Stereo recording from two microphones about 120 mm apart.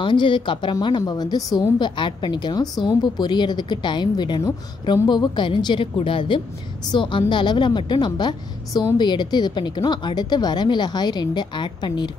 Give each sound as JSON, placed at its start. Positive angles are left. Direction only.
{"t": 0.0, "sound": "a woman's voice", "side_deg": 40}